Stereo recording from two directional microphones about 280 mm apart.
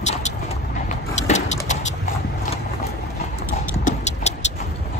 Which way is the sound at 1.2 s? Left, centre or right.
Left.